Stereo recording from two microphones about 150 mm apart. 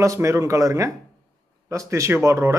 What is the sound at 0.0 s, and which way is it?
Speech, 20° right (ahead or behind).